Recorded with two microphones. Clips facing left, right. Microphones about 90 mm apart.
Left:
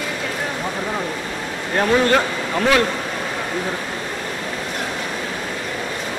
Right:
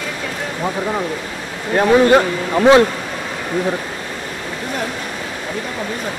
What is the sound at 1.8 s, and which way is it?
Speech, 15° right (ahead or behind).